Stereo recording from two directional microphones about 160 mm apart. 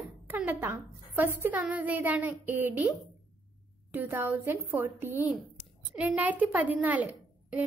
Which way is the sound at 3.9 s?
10° right (ahead or behind).